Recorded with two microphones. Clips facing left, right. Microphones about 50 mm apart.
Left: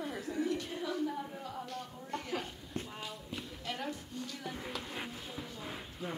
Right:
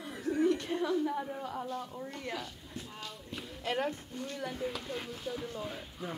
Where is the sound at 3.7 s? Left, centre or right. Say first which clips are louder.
Right 7 dB; right.